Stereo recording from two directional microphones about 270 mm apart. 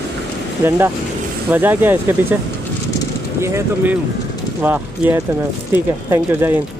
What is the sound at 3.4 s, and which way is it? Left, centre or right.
Speech, centre.